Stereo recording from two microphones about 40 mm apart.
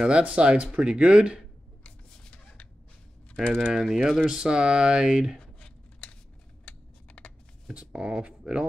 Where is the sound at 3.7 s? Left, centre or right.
Centre.